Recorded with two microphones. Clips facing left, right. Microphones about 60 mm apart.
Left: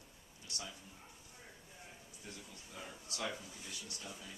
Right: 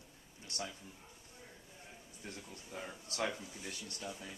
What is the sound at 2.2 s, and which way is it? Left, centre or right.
Speech, right.